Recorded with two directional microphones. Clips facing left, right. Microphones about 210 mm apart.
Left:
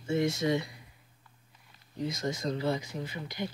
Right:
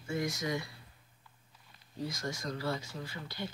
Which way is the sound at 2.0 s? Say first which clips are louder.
Left 5 dB; 20° left (ahead or behind).